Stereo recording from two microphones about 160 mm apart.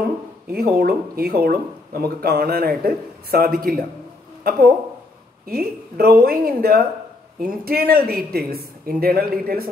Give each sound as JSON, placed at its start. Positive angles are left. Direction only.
{"t": 0.5, "sound": "speech", "side_deg": -70}
{"t": 5.5, "sound": "speech", "side_deg": -70}